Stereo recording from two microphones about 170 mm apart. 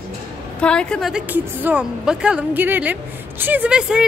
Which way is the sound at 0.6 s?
5° left (ahead or behind).